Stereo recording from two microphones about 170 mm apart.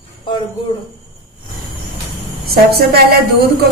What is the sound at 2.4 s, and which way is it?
A woman's voice, 65° right (ahead or behind).